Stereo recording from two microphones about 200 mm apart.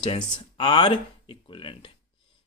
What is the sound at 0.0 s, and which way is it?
Speech, 25° left (ahead or behind).